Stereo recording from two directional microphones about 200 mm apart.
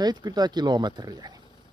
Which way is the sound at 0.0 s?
20° right (ahead or behind).